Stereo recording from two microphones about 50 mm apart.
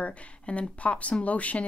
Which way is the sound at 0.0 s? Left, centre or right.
Left.